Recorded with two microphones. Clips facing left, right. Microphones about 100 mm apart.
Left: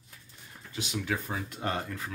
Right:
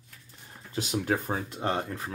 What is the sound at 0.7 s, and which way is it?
Speech, 40° right (ahead or behind).